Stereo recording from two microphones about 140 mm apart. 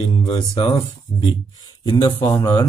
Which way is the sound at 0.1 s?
35° left (ahead or behind).